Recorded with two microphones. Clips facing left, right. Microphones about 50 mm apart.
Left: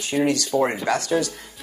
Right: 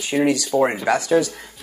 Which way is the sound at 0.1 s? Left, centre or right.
Centre.